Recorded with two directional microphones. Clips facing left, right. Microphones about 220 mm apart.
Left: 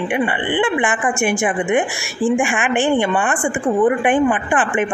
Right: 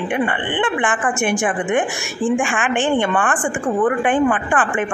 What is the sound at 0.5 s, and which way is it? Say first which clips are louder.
Speech: left 2 dB; 10° left (ahead or behind).